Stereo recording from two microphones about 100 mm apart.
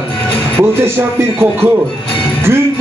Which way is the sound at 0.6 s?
25° right (ahead or behind).